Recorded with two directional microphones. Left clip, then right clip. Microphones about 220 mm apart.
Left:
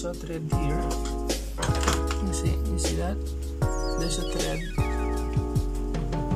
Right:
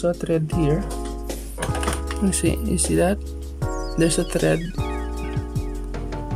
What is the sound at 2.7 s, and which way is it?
Speech, 45° right (ahead or behind).